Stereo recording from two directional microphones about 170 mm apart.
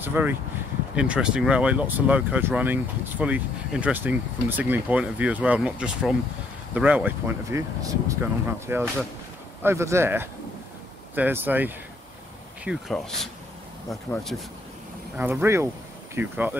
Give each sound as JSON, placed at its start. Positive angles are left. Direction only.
{"t": 0.0, "sound": "speech", "side_deg": -10}
{"t": 12.6, "sound": "speech", "side_deg": 0}
{"t": 15.1, "sound": "speech", "side_deg": -15}